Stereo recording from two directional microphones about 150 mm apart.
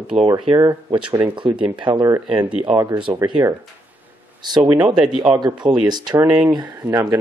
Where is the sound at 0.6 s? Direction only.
25° right (ahead or behind).